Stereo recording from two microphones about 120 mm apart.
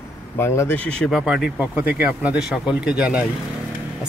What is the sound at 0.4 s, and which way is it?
Speech, 20° left (ahead or behind).